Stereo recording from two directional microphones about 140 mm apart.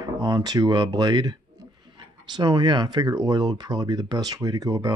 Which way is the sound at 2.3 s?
30° right (ahead or behind).